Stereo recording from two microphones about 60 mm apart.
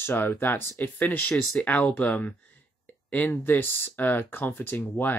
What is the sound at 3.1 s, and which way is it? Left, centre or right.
Speech, left.